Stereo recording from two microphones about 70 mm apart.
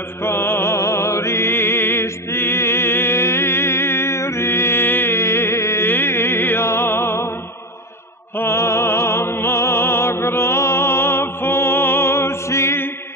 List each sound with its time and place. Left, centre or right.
0.2 s music: left
8.4 s music: left